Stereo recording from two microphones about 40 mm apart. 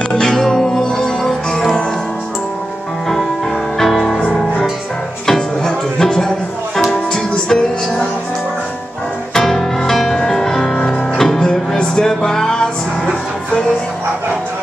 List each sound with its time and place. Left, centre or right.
0.1 s music: centre
3.4 s music: centre
4.2 s music: left
5.2 s music: centre
7.5 s music: left
9.3 s music: centre